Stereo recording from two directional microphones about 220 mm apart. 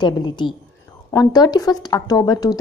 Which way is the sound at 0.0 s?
20° left (ahead or behind).